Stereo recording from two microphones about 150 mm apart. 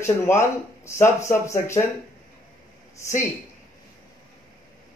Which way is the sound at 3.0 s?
20° left (ahead or behind).